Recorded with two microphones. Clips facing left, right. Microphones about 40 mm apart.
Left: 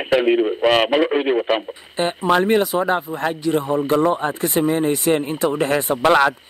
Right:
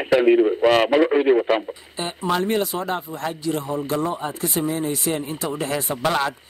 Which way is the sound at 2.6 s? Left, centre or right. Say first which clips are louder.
Left 6 dB; centre.